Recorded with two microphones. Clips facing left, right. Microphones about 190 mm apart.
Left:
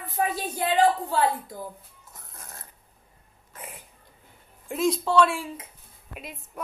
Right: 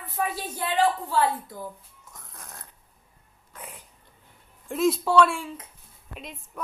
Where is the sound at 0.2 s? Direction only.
20° left (ahead or behind).